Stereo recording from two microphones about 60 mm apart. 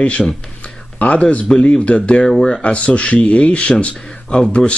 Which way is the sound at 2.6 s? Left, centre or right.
Left.